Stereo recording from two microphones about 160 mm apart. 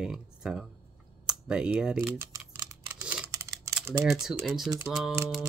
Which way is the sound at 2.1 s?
20° right (ahead or behind).